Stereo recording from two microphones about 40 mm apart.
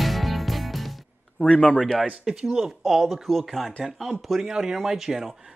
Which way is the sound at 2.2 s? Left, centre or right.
Centre.